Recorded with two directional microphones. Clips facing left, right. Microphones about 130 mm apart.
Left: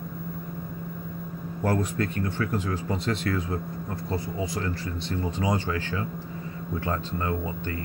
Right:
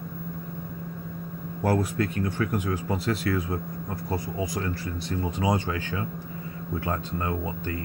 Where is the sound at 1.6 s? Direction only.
10° right (ahead or behind).